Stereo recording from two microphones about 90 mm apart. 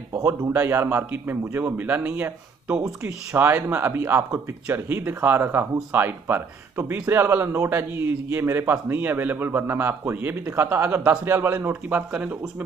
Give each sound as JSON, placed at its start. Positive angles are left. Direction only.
{"t": 0.1, "sound": "speech", "side_deg": -35}
{"t": 12.1, "sound": "speech", "side_deg": -15}